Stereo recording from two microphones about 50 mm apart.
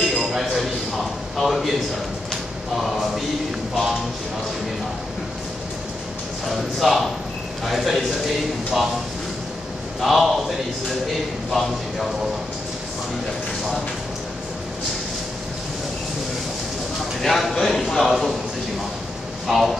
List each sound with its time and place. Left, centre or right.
0.1 s a sound: centre
1.3 s a man's voice: centre
6.4 s a man's voice: centre
9.9 s a man's voice: centre
11.5 s a man's voice: centre
17.2 s a man's voice: centre
19.4 s speech: centre